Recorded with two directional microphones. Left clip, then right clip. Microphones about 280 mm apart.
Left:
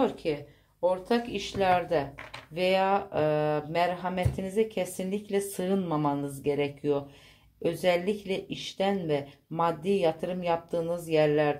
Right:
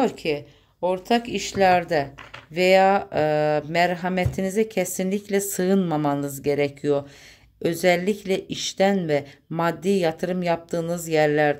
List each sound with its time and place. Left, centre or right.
0.0 s speech: right